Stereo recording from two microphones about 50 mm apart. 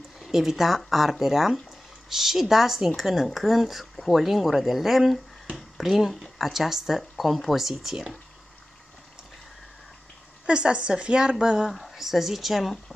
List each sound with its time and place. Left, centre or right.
0.2 s speech: centre
10.4 s a woman's voice: centre